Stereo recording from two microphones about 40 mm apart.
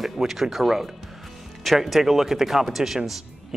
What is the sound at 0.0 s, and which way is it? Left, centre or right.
A man's voice, centre.